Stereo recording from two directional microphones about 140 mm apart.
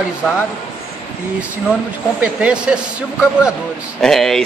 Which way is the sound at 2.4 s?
5° right (ahead or behind).